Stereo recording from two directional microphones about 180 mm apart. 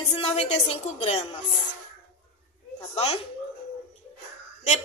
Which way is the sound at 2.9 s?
35° left (ahead or behind).